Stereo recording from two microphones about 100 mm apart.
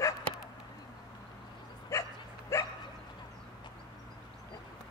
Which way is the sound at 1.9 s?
30° left (ahead or behind).